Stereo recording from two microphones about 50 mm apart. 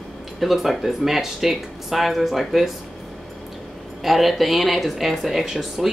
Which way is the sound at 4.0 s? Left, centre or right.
Centre.